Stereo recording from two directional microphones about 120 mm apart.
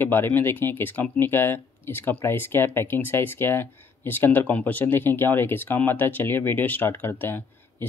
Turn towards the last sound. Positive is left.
turn(degrees=20)  # may be behind; listen again after turning